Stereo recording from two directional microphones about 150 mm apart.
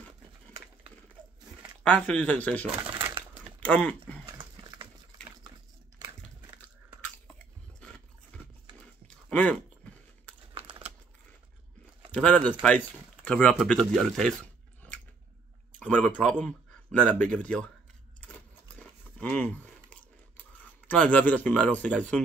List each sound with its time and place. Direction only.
1.8 s speech: 5° left (ahead or behind)
3.6 s speech: 10° left (ahead or behind)
4.3 s dog: 25° right (ahead or behind)
5.9 s biting: 25° right (ahead or behind)
9.0 s a sound: 10° left (ahead or behind)
12.1 s speech: 10° left (ahead or behind)
15.8 s speech: 10° left (ahead or behind)
18.2 s a sound: 10° left (ahead or behind)